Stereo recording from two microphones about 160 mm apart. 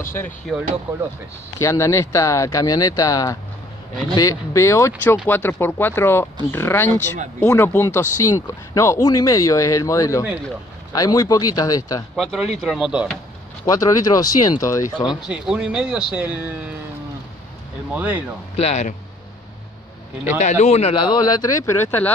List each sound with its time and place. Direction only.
1.6 s speech: 20° left (ahead or behind)
12.2 s speech: centre (ahead or behind)
13.7 s speech: 20° left (ahead or behind)
15.2 s speech: 5° right (ahead or behind)
17.9 s speech: 10° right (ahead or behind)
18.6 s speech: 45° left (ahead or behind)
20.3 s speech: 50° left (ahead or behind); by 22.1 s 15° left (ahead or behind)